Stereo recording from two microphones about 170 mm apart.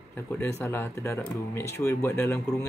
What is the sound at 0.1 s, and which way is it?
Speech, 15° left (ahead or behind).